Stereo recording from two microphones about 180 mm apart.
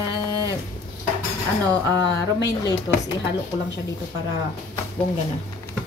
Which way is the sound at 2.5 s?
20° left (ahead or behind).